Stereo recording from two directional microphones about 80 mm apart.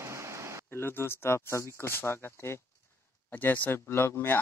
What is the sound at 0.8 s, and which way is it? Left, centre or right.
Speech, left.